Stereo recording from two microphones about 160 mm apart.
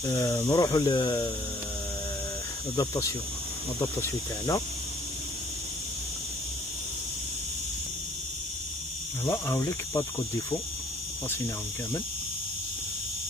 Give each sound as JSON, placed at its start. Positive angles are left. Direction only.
{"t": 0.0, "sound": "speech", "side_deg": 20}
{"t": 2.7, "sound": "speech", "side_deg": 20}
{"t": 9.2, "sound": "speech", "side_deg": 20}